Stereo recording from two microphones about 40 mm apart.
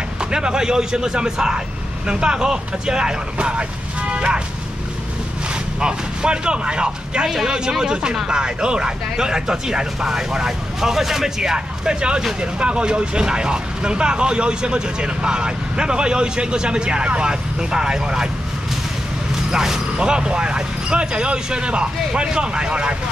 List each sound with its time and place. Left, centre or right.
0.2 s speech: right
5.8 s speech: right
7.2 s speech: centre
7.8 s speech: right
19.5 s speech: centre